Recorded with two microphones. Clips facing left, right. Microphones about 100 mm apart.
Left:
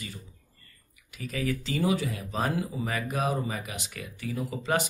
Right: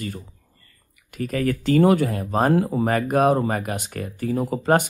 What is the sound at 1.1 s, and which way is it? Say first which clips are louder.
Speech: right 8 dB; 50° right (ahead or behind).